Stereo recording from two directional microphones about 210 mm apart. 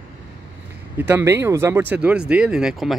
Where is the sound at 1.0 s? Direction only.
10° right (ahead or behind).